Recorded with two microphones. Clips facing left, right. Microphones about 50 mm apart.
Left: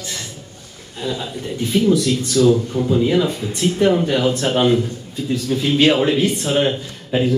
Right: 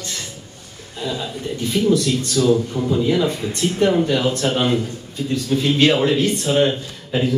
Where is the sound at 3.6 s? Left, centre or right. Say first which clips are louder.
Left 2 dB; centre.